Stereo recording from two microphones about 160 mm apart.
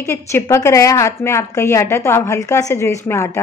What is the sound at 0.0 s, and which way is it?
A woman's voice, 15° left (ahead or behind).